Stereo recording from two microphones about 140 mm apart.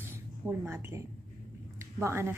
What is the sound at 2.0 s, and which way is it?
Speech, 20° right (ahead or behind).